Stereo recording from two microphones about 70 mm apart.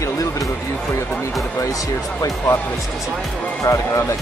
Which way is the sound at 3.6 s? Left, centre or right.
Left.